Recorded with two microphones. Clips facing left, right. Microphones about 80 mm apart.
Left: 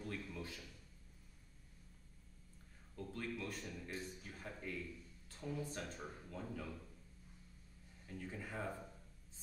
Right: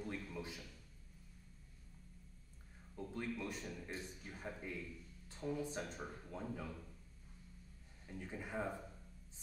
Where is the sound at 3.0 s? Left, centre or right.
Centre.